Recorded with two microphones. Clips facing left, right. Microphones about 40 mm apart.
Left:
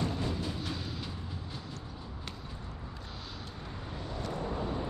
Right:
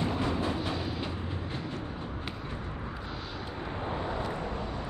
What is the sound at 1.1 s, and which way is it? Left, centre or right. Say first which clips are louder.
Vehicle: right 6 dB; right.